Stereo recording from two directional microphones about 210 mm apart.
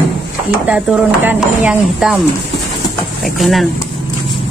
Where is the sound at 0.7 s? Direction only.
5° right (ahead or behind).